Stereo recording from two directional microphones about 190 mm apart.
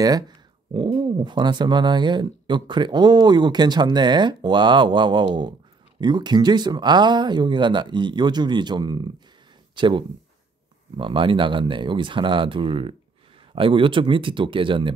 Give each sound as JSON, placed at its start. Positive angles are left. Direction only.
{"t": 0.7, "sound": "speech", "side_deg": -25}